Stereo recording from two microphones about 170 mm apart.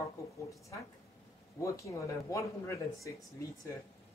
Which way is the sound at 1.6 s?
20° left (ahead or behind).